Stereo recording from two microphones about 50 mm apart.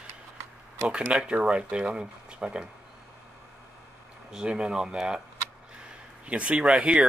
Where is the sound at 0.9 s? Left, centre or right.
Right.